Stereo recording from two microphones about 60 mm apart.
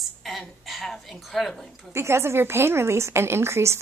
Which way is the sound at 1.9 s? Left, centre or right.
Right.